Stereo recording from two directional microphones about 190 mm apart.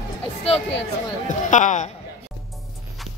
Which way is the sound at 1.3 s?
40° left (ahead or behind).